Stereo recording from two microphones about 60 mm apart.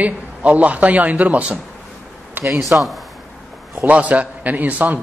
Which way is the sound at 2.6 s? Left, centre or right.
Centre.